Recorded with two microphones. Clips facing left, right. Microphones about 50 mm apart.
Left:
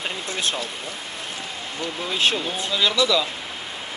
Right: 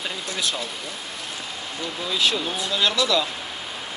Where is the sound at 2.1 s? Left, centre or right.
Left.